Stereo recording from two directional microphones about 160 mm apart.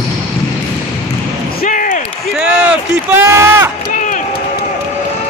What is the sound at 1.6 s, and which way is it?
Slam, 60° left (ahead or behind).